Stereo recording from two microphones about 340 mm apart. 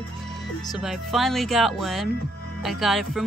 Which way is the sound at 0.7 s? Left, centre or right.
Centre.